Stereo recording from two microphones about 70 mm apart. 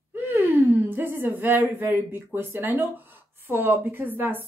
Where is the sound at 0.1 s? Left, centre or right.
Right.